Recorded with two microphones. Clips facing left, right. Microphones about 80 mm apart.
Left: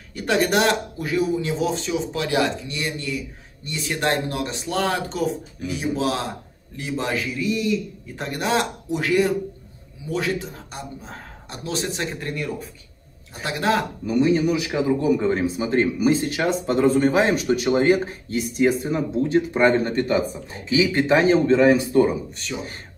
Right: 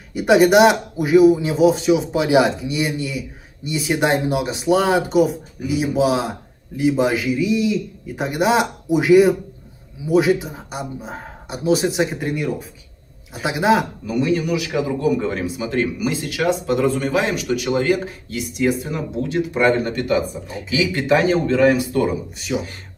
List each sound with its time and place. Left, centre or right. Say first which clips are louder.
0.1 s speech: right 8 dB; centre
14.2 s a man's voice: even; left
22.5 s speech: right 7 dB; right